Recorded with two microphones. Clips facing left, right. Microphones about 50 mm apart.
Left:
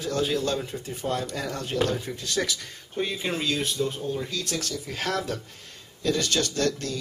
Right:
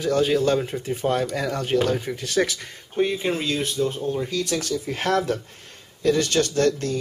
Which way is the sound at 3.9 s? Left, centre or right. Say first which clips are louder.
Right 5 dB; right.